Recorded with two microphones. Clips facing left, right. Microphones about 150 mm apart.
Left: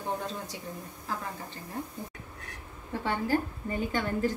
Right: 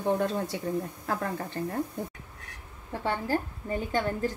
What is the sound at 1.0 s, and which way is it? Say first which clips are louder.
Speech: right 6 dB; 60° right (ahead or behind).